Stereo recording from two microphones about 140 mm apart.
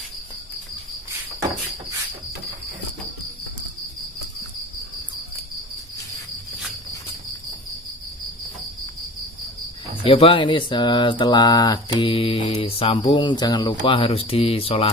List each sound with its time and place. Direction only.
10.0 s speech: 40° left (ahead or behind)